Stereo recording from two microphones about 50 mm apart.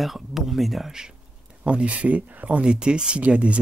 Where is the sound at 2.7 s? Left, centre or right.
Centre.